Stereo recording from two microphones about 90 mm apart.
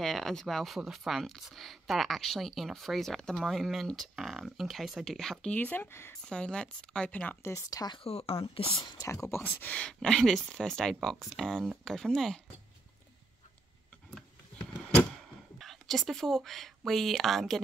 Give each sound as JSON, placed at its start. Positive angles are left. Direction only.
{"t": 0.0, "sound": "speech", "side_deg": 5}
{"t": 5.5, "sound": "speech", "side_deg": 20}
{"t": 7.4, "sound": "speech", "side_deg": 35}
{"t": 8.0, "sound": "speech", "side_deg": 90}
{"t": 9.0, "sound": "speech", "side_deg": 30}
{"t": 9.8, "sound": "speech", "side_deg": 10}
{"t": 11.0, "sound": "speech", "side_deg": -5}
{"t": 15.6, "sound": "speech", "side_deg": 0}